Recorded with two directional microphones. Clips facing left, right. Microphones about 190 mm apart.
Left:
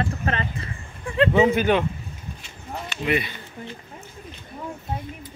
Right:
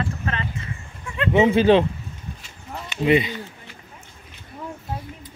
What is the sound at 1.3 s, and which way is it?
Speech, 25° right (ahead or behind).